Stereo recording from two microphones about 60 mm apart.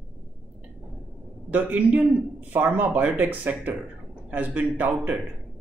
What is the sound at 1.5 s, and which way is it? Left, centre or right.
Speech, right.